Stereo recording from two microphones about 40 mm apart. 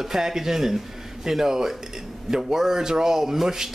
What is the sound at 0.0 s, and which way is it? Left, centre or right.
Speech, centre.